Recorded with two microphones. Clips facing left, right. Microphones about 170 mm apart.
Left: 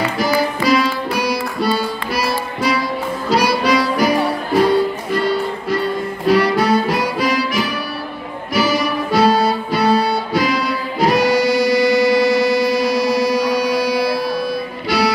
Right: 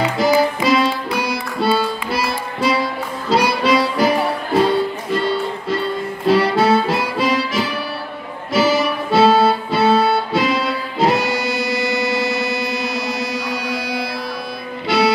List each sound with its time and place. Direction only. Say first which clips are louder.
0.2 s music: right 3 dB; 20° right (ahead or behind)